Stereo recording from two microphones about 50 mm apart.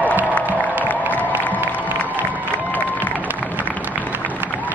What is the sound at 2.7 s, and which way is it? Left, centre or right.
Crowd, left.